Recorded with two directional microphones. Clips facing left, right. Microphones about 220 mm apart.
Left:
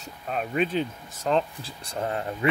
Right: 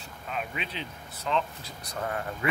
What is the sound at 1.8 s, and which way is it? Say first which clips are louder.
Speech: left 4 dB; 25° left (ahead or behind).